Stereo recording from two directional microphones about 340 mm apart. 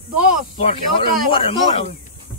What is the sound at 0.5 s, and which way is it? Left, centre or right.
Speech, centre.